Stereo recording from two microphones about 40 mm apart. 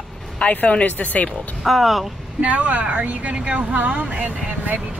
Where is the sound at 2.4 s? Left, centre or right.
Right.